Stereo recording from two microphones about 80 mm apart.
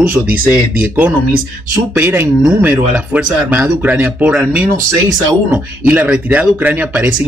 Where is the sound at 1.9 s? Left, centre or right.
Right.